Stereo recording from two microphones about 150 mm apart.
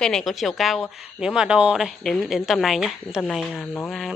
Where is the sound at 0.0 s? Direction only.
Centre (ahead or behind).